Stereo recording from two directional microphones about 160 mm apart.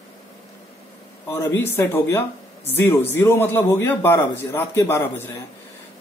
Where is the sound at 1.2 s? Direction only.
15° left (ahead or behind).